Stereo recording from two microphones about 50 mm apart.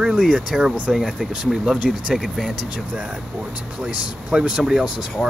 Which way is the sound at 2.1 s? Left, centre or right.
Centre.